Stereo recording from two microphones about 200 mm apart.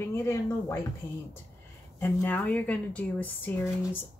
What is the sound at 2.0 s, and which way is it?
A woman's voice, 10° left (ahead or behind).